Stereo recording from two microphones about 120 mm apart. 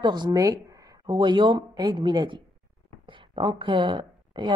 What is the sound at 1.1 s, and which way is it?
A woman's voice, 40° right (ahead or behind).